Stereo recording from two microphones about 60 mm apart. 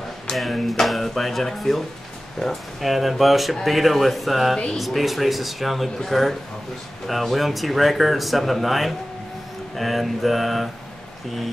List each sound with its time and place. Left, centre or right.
0.4 s speech: centre